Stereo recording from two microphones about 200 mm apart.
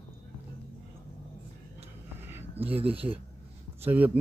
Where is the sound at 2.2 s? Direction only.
10° right (ahead or behind).